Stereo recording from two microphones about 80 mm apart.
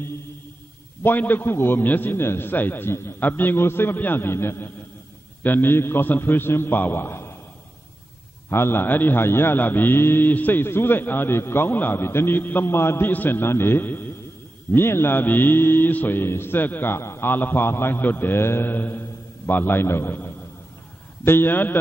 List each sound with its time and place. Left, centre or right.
1.0 s a man's voice: left
8.5 s a man's voice: left